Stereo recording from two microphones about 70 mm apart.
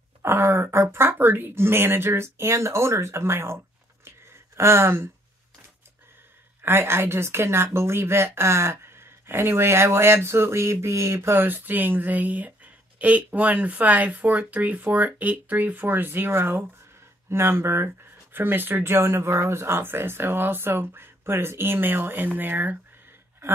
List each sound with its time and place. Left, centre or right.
0.2 s speech: right
6.6 s speech: right